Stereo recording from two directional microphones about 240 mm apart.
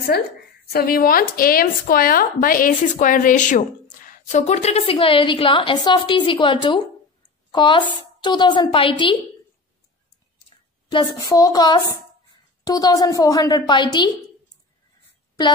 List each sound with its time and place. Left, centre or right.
0.7 s a woman's voice: left
10.9 s a woman's voice: centre